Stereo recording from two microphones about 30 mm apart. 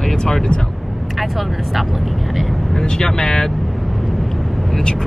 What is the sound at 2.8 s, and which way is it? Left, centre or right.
Speech, centre.